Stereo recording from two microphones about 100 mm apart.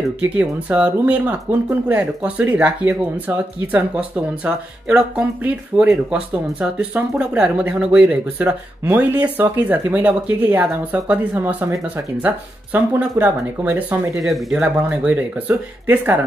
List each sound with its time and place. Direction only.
0.2 s speech: 15° right (ahead or behind)
14.1 s speech: centre (ahead or behind)
15.0 s speech: 15° right (ahead or behind)